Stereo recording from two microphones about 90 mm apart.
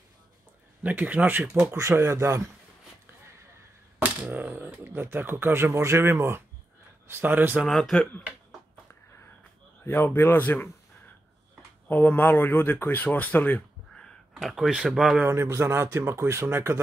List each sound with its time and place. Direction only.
0.8 s speech: 15° right (ahead or behind); by 2.5 s 35° right (ahead or behind)
4.0 s speech: 20° right (ahead or behind)
7.6 s speech: 5° left (ahead or behind)
9.8 s speech: 25° left (ahead or behind)
11.9 s speech: 20° left (ahead or behind)
14.4 s speech: 5° right (ahead or behind)
15.2 s speech: 30° right (ahead or behind)